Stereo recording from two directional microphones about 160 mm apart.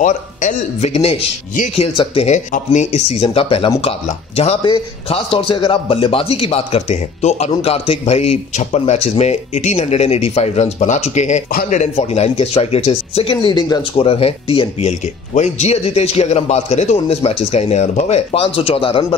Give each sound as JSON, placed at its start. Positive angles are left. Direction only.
{"t": 0.0, "sound": "a man's voice", "side_deg": 50}